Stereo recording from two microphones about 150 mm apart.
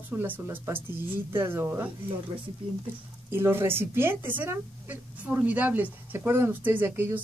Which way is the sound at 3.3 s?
15° right (ahead or behind).